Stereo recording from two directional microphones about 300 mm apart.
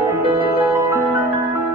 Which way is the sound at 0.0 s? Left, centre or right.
Centre.